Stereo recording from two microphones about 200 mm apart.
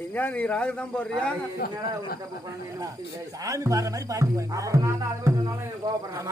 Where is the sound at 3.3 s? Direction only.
15° right (ahead or behind).